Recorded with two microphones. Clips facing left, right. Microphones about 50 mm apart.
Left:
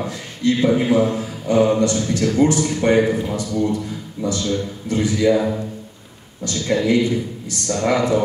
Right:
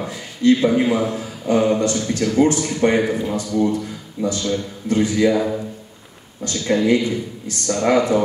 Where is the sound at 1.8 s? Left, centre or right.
Right.